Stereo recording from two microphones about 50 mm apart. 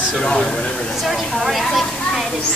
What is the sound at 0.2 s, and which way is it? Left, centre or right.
Speech, centre.